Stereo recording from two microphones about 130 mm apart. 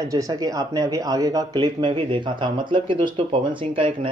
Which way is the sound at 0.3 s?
30° right (ahead or behind).